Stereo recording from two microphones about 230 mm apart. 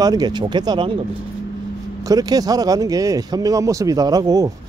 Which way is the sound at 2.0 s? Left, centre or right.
Centre.